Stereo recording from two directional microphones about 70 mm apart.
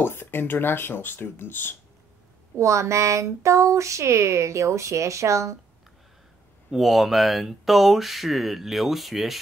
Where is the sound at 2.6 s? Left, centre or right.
Right.